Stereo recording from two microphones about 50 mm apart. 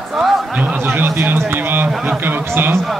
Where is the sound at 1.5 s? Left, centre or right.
Right.